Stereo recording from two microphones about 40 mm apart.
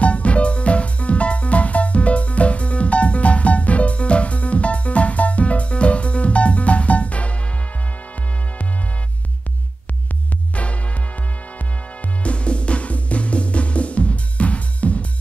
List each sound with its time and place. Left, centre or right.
0.0 s music: left
10.5 s music: left
12.2 s drum: left